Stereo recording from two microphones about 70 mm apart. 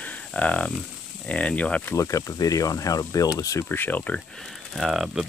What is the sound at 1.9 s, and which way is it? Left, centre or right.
Speech, left.